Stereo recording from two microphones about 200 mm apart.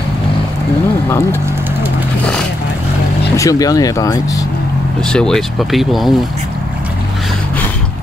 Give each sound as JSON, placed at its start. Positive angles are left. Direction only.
{"t": 3.3, "sound": "speech", "side_deg": 15}
{"t": 5.1, "sound": "speech", "side_deg": 5}